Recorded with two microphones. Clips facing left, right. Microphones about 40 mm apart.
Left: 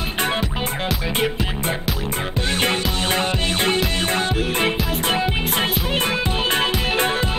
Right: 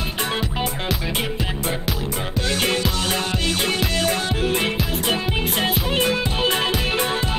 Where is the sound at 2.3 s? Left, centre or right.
Left.